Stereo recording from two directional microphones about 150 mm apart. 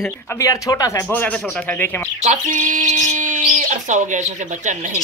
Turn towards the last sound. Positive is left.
turn(degrees=-55)  # may be behind; listen again after turning